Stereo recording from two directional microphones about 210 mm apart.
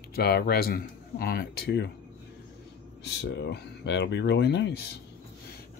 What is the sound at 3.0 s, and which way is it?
Speech, 55° left (ahead or behind).